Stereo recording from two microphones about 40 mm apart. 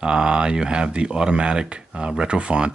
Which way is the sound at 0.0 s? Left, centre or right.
Right.